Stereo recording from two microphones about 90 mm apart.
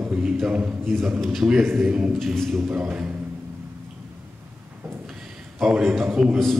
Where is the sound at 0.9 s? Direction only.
Centre (ahead or behind).